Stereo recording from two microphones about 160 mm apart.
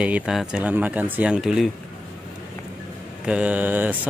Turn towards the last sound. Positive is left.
turn(degrees=-10)  # may be behind; listen again after turning